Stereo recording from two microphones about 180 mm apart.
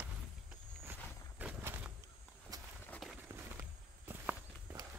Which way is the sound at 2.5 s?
20° right (ahead or behind).